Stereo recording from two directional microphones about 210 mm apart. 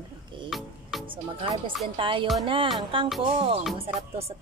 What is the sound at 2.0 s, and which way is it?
Speech, 25° right (ahead or behind).